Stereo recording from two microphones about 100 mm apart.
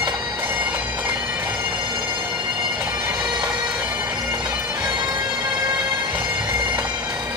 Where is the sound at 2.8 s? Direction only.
15° right (ahead or behind).